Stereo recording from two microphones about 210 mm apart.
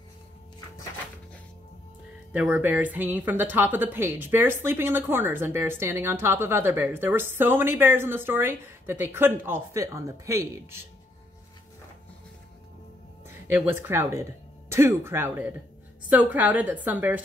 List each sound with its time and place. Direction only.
2.3 s a woman's voice: 10° right (ahead or behind)
13.5 s a woman's voice: 10° right (ahead or behind)